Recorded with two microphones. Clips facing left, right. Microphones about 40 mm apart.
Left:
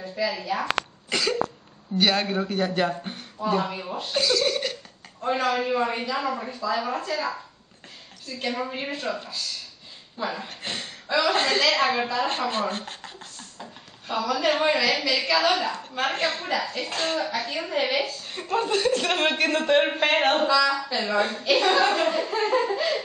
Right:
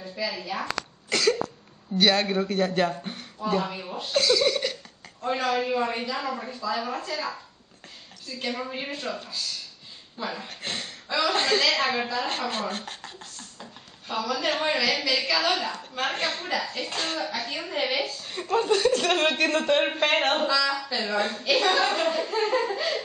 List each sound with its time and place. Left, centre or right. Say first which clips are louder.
0.0 s a woman's voice: left 4 dB; centre
3.0 s a sound: left 1 dB; centre
3.4 s a man's voice: left 2 dB; centre
4.5 s cough: right 1 dB; centre
5.2 s a man's voice: left 2 dB; centre
12.4 s a man's voice: left 3 dB; centre